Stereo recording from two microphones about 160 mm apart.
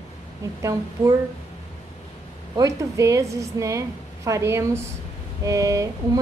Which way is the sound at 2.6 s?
20° right (ahead or behind).